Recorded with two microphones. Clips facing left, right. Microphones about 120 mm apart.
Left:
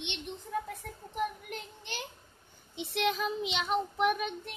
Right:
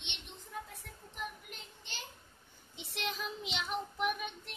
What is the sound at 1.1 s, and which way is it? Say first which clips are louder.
Speech: left 10 dB; 55° left (ahead or behind).